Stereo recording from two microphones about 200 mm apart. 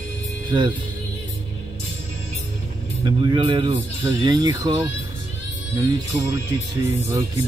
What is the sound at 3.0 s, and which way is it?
Speech, 25° right (ahead or behind).